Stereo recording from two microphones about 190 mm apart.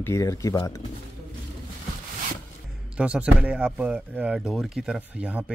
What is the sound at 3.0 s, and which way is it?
Speech, 5° right (ahead or behind).